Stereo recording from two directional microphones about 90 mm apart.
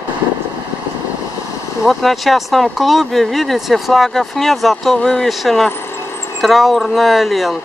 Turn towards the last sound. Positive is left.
turn(degrees=0)  # may be behind; listen again after turning